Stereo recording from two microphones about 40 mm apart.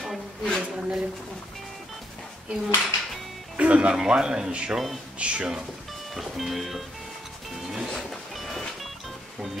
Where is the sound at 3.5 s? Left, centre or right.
Right.